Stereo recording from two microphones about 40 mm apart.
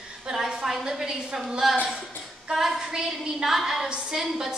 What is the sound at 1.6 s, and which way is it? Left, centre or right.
A woman's voice, centre.